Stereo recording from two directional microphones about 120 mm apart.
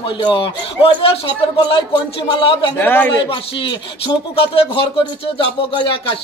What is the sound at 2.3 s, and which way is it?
Speech, 45° left (ahead or behind).